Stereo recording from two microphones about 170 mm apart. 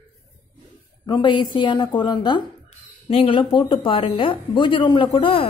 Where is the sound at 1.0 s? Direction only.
30° left (ahead or behind).